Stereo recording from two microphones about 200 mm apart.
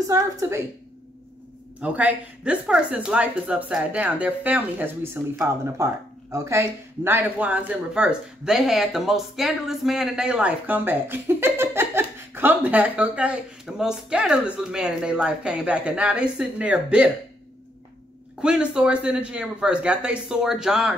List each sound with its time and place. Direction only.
0.0 s speech: 15° right (ahead or behind)
1.8 s speech: 5° right (ahead or behind)
18.4 s speech: 5° right (ahead or behind)